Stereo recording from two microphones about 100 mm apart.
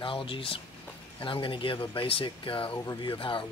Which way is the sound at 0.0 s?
60° left (ahead or behind).